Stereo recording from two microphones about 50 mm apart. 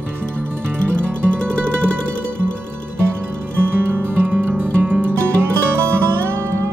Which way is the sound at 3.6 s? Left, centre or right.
Right.